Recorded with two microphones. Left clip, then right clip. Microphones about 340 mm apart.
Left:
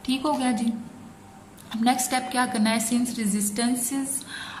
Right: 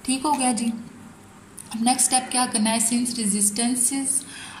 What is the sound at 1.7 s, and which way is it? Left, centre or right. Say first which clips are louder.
A woman's voice: right 1 dB; centre.